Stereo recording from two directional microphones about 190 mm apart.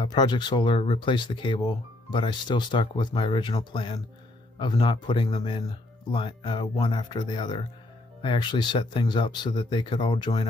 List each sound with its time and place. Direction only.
0.0 s speech: 20° left (ahead or behind)